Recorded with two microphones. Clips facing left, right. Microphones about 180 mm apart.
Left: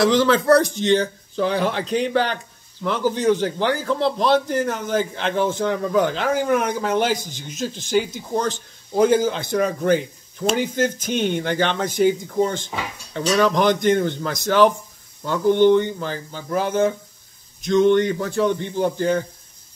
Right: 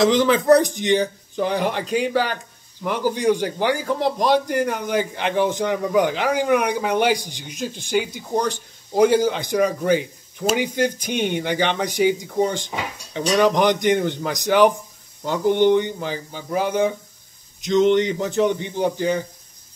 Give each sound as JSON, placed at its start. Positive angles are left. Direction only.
{"t": 0.0, "sound": "a man's voice", "side_deg": -20}